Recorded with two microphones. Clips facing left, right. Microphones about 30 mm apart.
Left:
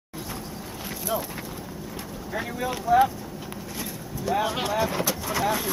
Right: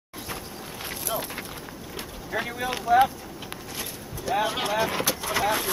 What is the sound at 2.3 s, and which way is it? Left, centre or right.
Speech, centre.